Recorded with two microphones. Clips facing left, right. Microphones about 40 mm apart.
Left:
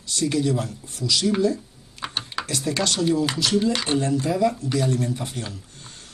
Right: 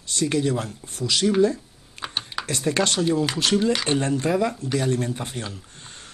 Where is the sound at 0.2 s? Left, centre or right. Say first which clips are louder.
Even; right.